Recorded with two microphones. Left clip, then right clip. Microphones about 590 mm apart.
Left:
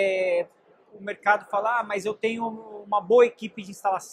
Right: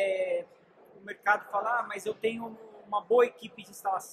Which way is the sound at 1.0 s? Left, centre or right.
Left.